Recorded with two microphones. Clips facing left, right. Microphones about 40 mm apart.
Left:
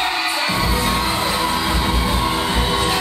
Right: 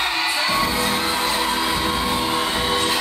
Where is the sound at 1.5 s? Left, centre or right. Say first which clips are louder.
Left 1 dB; centre.